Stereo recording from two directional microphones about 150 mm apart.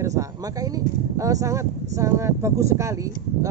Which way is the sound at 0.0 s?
20° right (ahead or behind).